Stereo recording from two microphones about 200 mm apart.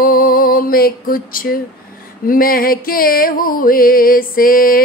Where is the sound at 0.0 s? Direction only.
45° left (ahead or behind).